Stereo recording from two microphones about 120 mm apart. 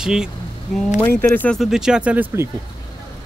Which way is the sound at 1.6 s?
5° right (ahead or behind).